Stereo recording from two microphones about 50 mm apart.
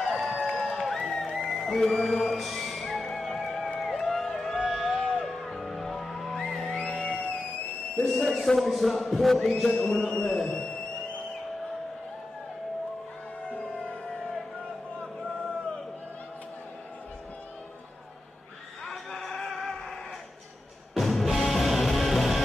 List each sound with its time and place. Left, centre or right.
0.0 s crowd: centre
1.1 s music: centre
3.8 s a sound: centre
5.2 s music: centre
6.7 s music: left
8.2 s a sound: centre
8.5 s speech: centre
9.7 s speech: centre
18.9 s music: centre
20.9 s music: centre